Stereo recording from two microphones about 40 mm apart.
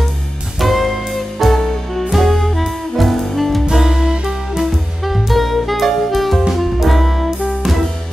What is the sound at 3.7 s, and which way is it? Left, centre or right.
Music, centre.